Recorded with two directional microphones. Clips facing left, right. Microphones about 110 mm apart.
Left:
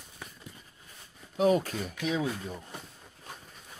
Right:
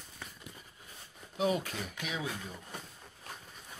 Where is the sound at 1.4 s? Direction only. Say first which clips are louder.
Left 6 dB; 40° left (ahead or behind).